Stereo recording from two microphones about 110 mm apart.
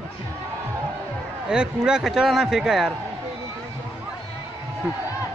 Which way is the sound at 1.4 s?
5° right (ahead or behind).